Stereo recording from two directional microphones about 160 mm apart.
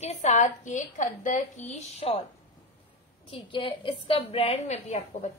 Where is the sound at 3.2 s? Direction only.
35° left (ahead or behind).